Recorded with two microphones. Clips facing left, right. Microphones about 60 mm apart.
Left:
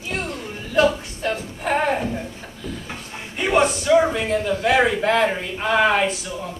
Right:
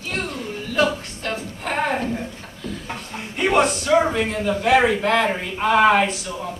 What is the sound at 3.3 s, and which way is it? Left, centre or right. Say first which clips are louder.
A man's voice: even; centre.